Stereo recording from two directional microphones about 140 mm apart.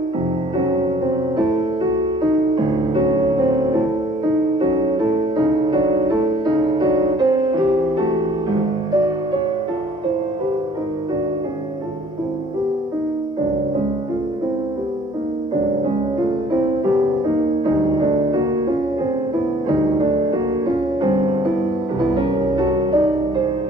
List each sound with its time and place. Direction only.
2.5 s music: 35° right (ahead or behind)
20.2 s music: 30° right (ahead or behind)